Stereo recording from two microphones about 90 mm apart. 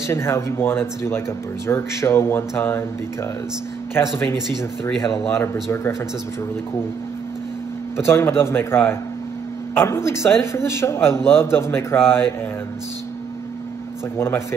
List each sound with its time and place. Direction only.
0.0 s speech: 30° left (ahead or behind)
3.9 s speech: 30° left (ahead or behind)
8.0 s speech: 25° left (ahead or behind)
14.1 s speech: 25° left (ahead or behind)